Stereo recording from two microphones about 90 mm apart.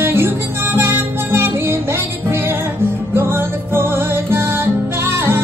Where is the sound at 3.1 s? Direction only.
25° right (ahead or behind).